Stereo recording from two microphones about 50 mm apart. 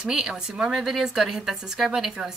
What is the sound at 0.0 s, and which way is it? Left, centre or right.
A woman's voice, centre.